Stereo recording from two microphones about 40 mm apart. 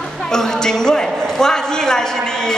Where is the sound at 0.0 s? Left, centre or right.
Centre.